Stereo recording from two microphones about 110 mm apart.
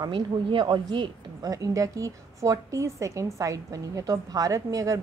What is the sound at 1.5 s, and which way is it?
A woman's voice, 30° right (ahead or behind).